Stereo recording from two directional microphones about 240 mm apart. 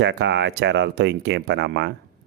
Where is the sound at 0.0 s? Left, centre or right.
Right.